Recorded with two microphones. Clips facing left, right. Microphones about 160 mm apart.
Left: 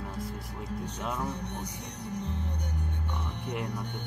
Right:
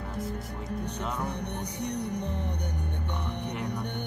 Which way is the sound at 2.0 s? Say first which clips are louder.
Even; 65° right (ahead or behind).